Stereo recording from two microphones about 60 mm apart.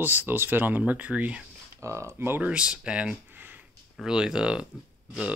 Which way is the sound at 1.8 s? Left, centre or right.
Right.